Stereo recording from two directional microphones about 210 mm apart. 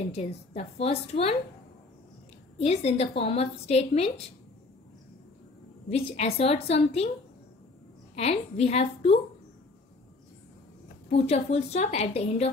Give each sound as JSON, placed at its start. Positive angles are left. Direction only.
{"t": 0.0, "sound": "a woman's voice", "side_deg": 30}
{"t": 2.6, "sound": "a woman's voice", "side_deg": 30}
{"t": 5.9, "sound": "a woman's voice", "side_deg": 30}
{"t": 8.2, "sound": "a woman's voice", "side_deg": 30}
{"t": 11.1, "sound": "a woman's voice", "side_deg": 30}